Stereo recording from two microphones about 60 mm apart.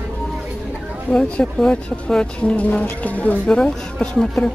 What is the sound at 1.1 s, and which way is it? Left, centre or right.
Speech, centre.